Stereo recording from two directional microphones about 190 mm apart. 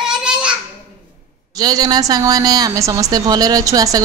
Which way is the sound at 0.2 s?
5° right (ahead or behind).